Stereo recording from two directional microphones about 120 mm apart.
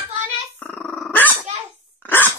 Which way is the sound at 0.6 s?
10° left (ahead or behind).